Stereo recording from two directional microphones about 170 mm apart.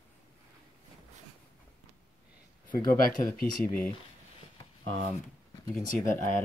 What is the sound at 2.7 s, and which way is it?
Speech, 55° left (ahead or behind).